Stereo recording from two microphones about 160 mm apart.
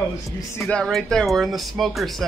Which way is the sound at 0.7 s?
5° left (ahead or behind).